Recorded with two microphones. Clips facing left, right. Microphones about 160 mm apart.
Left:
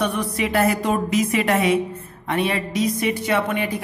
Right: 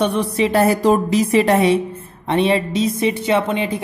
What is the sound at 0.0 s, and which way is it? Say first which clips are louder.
A woman's voice: right 5 dB; 25° right (ahead or behind).